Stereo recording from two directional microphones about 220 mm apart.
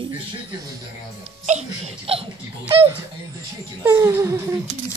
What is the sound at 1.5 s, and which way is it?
Speech, 30° right (ahead or behind).